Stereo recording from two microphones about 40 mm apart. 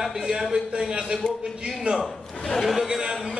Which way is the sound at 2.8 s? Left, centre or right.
Centre.